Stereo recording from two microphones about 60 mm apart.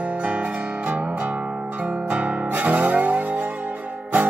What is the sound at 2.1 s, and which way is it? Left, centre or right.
Music, right.